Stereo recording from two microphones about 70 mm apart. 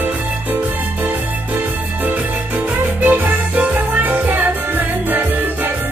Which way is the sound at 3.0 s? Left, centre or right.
Right.